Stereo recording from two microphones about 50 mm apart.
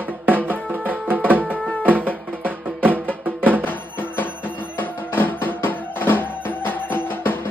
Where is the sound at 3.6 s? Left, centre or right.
Left.